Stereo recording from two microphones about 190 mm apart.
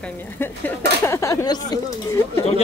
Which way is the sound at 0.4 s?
10° left (ahead or behind).